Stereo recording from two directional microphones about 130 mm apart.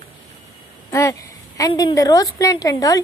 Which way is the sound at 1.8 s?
30° left (ahead or behind).